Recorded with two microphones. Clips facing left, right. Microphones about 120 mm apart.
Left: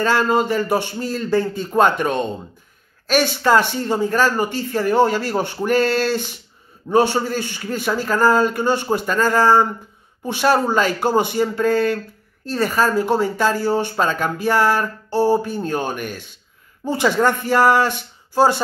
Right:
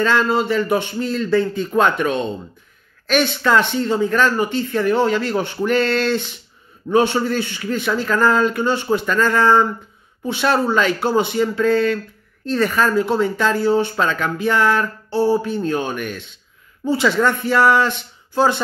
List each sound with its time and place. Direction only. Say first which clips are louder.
0.0 s speech: even; 40° left (ahead or behind)
3.4 s speech: left 1 dB; 40° left (ahead or behind)